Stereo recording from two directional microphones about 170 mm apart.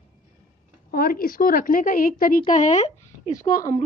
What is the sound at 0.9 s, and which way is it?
A woman's voice, 60° left (ahead or behind).